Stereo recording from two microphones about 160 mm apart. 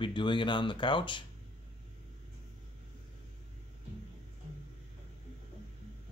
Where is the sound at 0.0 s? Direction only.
30° left (ahead or behind).